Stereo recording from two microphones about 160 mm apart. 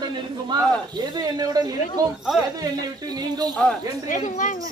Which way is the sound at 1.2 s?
25° right (ahead or behind).